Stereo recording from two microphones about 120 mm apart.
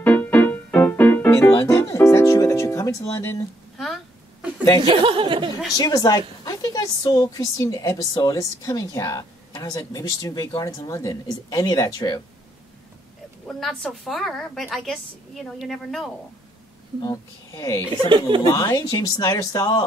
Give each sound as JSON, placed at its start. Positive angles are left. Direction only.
{"t": 0.0, "sound": "music", "side_deg": 10}
{"t": 1.3, "sound": "music", "side_deg": 25}
{"t": 3.7, "sound": "a sound", "side_deg": 0}
{"t": 4.7, "sound": "speech", "side_deg": -45}
{"t": 5.8, "sound": "speech", "side_deg": 30}
{"t": 13.5, "sound": "a woman's voice", "side_deg": 0}
{"t": 17.0, "sound": "speech", "side_deg": 30}
{"t": 18.0, "sound": "speech", "side_deg": -45}
{"t": 18.4, "sound": "speech", "side_deg": 30}